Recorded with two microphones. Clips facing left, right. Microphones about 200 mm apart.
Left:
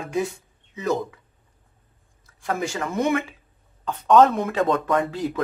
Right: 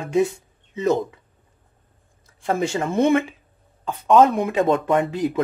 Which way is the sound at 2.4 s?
25° right (ahead or behind).